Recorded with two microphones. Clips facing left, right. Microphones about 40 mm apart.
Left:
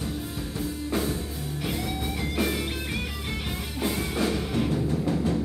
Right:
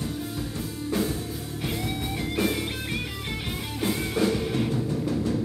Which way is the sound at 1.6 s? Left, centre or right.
Centre.